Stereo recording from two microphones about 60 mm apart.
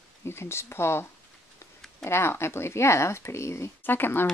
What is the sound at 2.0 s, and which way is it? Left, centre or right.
Speech, left.